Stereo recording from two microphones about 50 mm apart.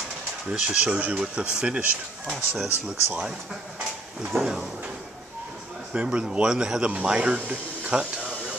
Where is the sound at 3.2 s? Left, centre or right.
Centre.